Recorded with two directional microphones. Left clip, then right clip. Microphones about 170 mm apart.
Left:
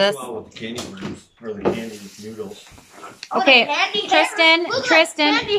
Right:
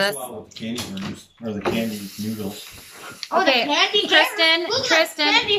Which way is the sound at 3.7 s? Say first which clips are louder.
Right 2 dB; 20° right (ahead or behind).